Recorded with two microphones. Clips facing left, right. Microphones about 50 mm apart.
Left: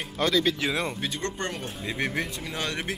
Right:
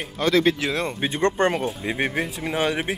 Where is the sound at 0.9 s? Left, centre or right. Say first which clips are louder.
Right 10 dB; right.